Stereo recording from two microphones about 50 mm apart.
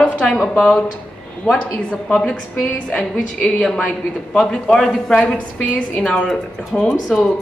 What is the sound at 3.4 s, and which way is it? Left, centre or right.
A man's voice, centre.